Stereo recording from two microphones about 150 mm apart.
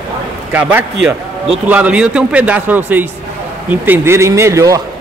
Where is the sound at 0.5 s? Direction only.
10° right (ahead or behind).